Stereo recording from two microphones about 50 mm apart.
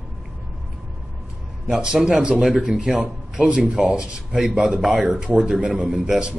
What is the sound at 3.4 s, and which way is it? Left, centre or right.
A man's voice, right.